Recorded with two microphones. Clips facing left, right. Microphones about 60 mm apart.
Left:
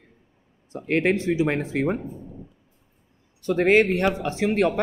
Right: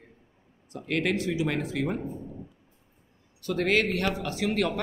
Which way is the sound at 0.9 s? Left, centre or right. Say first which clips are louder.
Left 6 dB; left.